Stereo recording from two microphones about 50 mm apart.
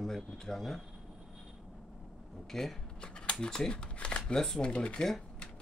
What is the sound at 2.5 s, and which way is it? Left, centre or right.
Speech, centre.